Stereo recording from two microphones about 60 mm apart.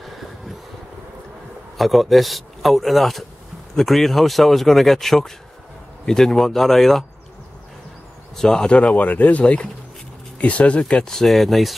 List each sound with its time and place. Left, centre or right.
1.8 s speech: centre
8.4 s speech: centre
11.1 s speech: centre